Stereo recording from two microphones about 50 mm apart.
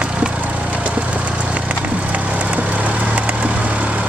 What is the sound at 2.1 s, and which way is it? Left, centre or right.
Vehicle, right.